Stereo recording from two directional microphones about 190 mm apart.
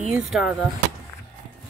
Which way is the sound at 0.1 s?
5° right (ahead or behind).